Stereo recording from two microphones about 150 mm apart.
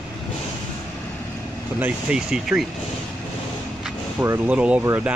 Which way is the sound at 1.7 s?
10° right (ahead or behind).